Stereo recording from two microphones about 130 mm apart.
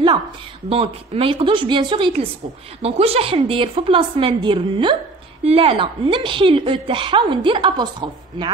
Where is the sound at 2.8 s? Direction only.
50° right (ahead or behind).